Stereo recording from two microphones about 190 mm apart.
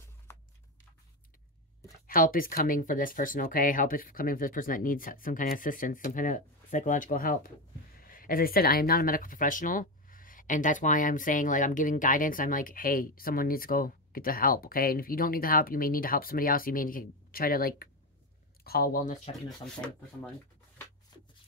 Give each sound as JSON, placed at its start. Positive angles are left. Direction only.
{"t": 2.0, "sound": "speech", "side_deg": 45}
{"t": 21.1, "sound": "shuffle", "side_deg": 20}